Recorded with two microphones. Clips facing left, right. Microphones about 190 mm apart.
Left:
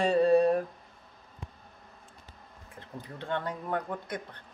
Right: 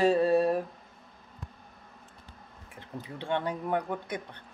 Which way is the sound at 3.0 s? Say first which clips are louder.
Right 3 dB; 15° right (ahead or behind).